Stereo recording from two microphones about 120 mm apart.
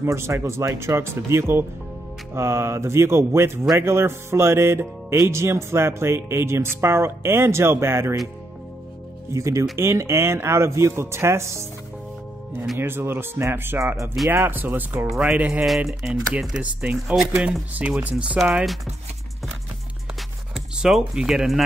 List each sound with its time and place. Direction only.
0.0 s speech: 20° right (ahead or behind)
9.3 s speech: 25° right (ahead or behind)
12.7 s speech: 20° right (ahead or behind)
20.5 s speech: 5° right (ahead or behind)